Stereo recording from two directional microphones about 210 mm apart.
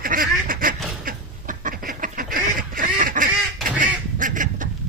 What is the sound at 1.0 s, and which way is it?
Duck, 40° right (ahead or behind).